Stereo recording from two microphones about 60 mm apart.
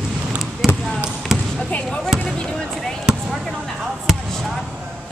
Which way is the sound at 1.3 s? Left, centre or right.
Centre.